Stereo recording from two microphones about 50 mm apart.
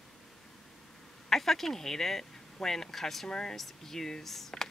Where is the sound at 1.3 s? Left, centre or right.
Centre.